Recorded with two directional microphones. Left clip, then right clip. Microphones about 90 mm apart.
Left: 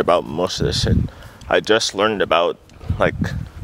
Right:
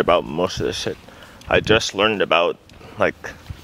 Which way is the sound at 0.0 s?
25° left (ahead or behind).